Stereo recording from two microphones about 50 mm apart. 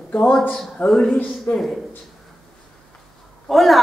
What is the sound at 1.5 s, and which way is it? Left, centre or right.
Speech, left.